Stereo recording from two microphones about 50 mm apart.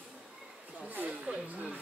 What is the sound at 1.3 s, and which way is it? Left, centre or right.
Speech, right.